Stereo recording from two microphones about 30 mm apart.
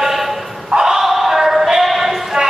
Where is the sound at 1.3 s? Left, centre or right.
Centre.